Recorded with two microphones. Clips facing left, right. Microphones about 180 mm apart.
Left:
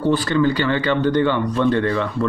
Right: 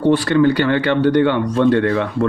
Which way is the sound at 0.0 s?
70° right (ahead or behind).